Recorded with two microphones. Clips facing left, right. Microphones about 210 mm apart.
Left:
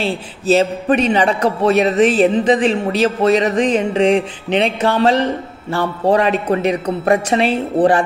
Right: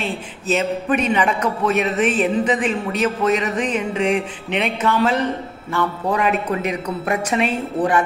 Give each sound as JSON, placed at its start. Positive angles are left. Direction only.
{"t": 0.0, "sound": "speech", "side_deg": 35}